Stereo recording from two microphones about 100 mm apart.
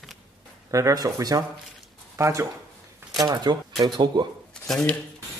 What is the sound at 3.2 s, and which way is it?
Speech, 40° right (ahead or behind).